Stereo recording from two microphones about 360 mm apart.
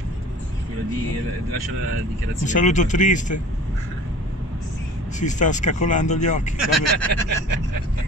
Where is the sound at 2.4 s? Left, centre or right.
Centre.